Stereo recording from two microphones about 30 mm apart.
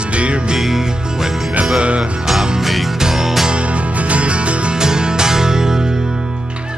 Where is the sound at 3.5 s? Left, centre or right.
Right.